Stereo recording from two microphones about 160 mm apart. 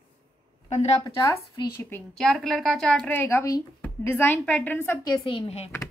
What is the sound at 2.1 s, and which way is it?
Speech, 5° left (ahead or behind).